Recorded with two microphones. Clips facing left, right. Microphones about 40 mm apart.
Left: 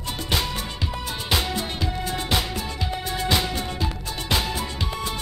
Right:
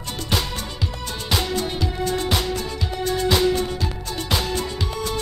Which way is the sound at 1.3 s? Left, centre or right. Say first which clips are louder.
Right 2 dB; centre.